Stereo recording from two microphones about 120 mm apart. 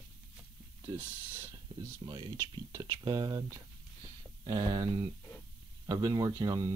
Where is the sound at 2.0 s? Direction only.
35° right (ahead or behind).